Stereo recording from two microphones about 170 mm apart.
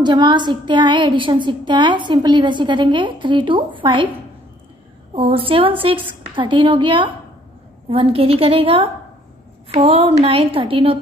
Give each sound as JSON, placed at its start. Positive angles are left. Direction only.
{"t": 0.0, "sound": "a woman's voice", "side_deg": -25}
{"t": 5.1, "sound": "a woman's voice", "side_deg": -35}